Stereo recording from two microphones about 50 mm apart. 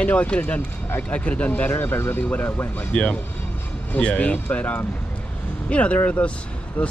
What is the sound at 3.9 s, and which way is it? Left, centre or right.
Speech, left.